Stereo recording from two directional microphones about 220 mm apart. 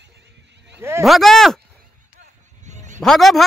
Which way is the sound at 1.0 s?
Centre (ahead or behind).